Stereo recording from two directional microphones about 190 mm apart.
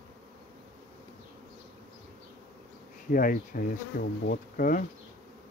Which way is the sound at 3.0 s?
50° left (ahead or behind).